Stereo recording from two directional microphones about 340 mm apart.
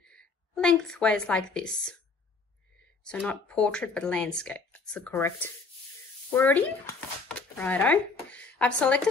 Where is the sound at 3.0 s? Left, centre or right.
Centre.